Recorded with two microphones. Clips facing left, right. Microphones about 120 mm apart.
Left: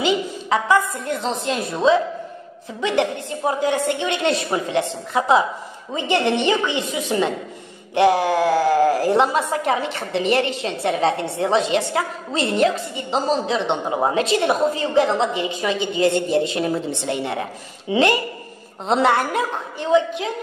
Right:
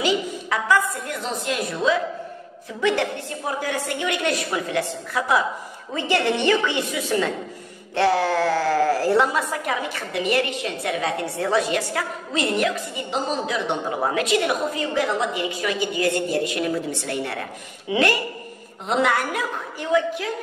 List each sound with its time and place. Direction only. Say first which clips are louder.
0.0 s a woman's voice: left 2 dB; 25° left (ahead or behind)